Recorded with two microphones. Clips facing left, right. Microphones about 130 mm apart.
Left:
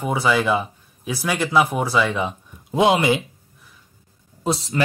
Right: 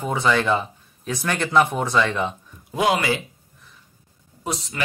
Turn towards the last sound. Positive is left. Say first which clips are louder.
# left 6 dB
turn(degrees=30)  # may be behind; listen again after turning